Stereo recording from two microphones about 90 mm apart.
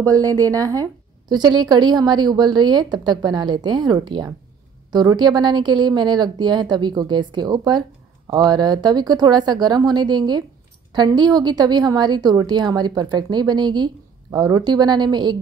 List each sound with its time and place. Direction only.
0.0 s a woman's voice: 40° right (ahead or behind)
1.3 s a woman's voice: 50° right (ahead or behind)